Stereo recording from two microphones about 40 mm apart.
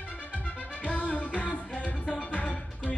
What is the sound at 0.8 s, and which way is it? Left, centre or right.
Music, left.